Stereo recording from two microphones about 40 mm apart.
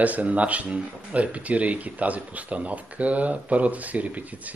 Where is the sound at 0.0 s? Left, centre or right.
Right.